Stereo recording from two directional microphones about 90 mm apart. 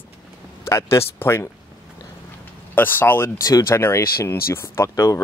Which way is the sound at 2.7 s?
20° left (ahead or behind).